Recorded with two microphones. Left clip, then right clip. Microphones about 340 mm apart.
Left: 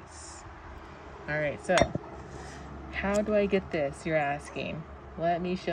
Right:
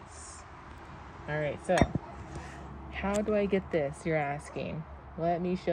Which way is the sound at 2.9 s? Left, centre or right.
Centre.